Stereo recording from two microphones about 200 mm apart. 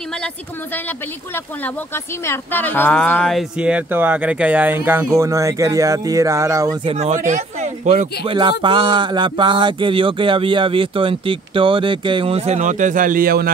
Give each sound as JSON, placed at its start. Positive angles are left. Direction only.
{"t": 0.8, "sound": "speech", "side_deg": 10}
{"t": 6.8, "sound": "speech", "side_deg": -30}
{"t": 8.2, "sound": "a sound", "side_deg": -25}